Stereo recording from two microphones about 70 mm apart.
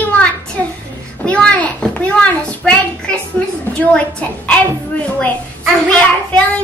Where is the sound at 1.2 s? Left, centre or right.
Centre.